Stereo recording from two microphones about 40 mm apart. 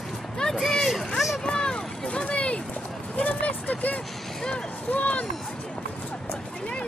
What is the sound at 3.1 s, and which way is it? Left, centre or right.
Vehicle, left.